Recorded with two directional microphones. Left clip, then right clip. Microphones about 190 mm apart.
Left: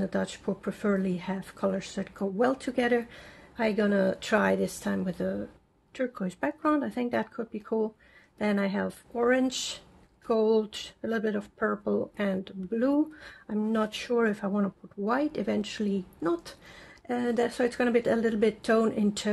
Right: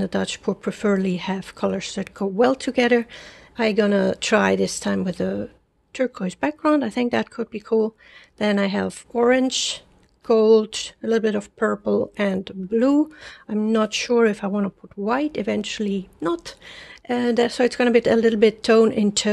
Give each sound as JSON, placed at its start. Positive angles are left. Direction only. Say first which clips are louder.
{"t": 0.0, "sound": "speech", "louder": "right 7 dB", "side_deg": -40}
{"t": 10.2, "sound": "speech", "louder": "right 10 dB", "side_deg": -45}